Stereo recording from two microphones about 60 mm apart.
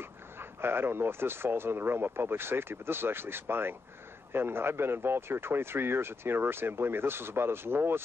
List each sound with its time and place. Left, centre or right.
0.0 s speech: right